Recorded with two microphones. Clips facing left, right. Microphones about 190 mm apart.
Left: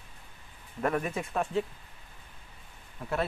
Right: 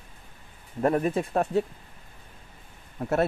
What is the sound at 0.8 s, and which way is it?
Speech, 35° right (ahead or behind).